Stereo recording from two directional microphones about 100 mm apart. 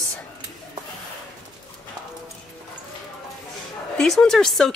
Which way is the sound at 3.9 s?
5° left (ahead or behind).